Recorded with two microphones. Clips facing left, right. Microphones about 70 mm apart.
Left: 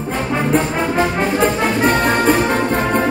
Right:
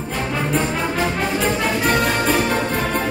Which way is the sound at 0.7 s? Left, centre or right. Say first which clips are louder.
Left 4 dB; left.